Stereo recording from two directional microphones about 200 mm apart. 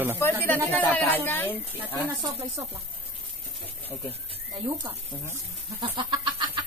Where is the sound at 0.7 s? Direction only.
10° left (ahead or behind).